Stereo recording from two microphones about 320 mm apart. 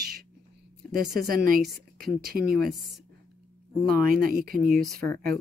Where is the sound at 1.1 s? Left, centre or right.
Right.